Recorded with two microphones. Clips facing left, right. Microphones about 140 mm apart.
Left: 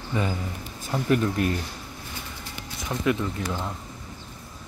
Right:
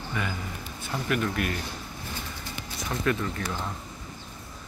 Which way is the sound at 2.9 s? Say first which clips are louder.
Left 3 dB; 15° left (ahead or behind).